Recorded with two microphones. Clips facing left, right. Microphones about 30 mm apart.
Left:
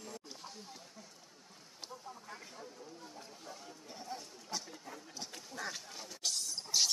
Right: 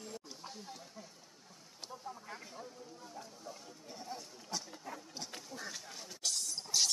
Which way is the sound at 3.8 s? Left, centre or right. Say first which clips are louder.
Even; centre.